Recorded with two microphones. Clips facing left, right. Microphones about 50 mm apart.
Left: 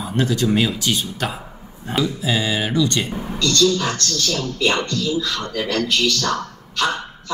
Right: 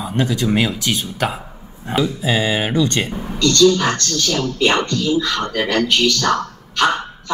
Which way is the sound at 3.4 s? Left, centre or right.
Right.